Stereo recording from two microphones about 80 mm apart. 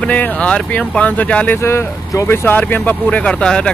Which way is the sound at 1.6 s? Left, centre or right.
Left.